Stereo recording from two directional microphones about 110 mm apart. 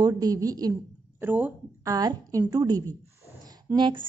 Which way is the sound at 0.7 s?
20° right (ahead or behind).